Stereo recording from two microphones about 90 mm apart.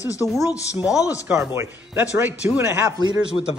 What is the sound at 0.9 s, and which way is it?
Speech, 40° left (ahead or behind).